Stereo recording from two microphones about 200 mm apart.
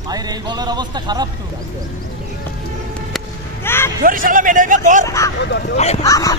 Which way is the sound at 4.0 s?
45° right (ahead or behind).